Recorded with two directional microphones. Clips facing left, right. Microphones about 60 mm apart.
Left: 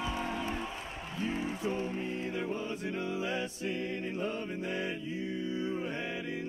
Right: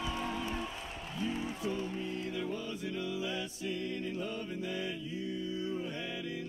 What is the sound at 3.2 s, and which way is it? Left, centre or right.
Music, left.